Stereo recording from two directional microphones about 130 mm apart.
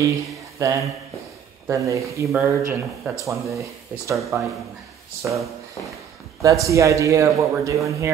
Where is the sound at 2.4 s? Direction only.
10° right (ahead or behind).